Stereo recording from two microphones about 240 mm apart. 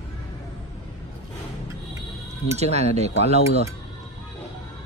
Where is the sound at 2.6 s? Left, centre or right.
Right.